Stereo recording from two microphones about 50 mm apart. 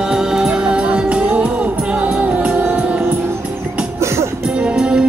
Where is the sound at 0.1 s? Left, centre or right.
Centre.